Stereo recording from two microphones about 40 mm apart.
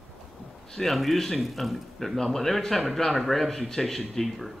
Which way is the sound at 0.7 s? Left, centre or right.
Centre.